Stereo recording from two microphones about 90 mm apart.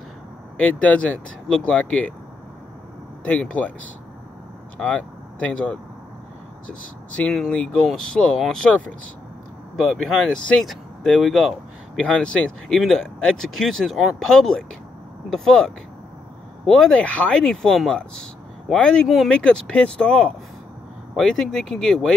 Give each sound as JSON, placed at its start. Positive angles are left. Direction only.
{"t": 0.6, "sound": "speech", "side_deg": 15}
{"t": 3.3, "sound": "speech", "side_deg": 15}
{"t": 4.7, "sound": "speech", "side_deg": 15}
{"t": 7.1, "sound": "speech", "side_deg": 10}
{"t": 9.8, "sound": "speech", "side_deg": 0}
{"t": 10.6, "sound": "speech", "side_deg": 0}
{"t": 19.0, "sound": "speech", "side_deg": 0}
{"t": 19.3, "sound": "speech", "side_deg": 10}